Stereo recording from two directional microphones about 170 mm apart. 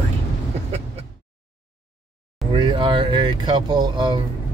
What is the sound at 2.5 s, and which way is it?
Speech, 25° right (ahead or behind).